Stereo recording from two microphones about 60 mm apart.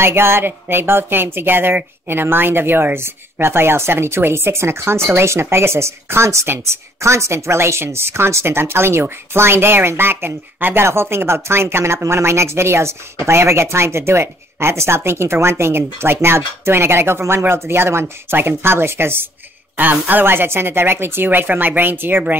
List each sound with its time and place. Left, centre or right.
0.0 s music: right
7.0 s speech: right
18.6 s music: right
19.8 s music: right